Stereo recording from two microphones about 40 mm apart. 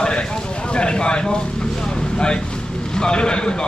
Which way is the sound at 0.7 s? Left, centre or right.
Left.